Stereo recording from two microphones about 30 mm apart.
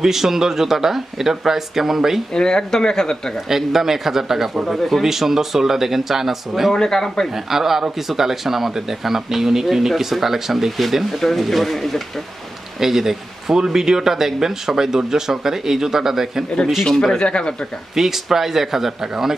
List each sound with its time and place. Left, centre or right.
0.0 s speech: centre
2.3 s speech: left
3.4 s speech: centre
4.6 s speech: centre
5.0 s speech: centre
6.7 s speech: centre
7.3 s speech: centre
12.8 s speech: centre
17.3 s speech: left
17.9 s speech: centre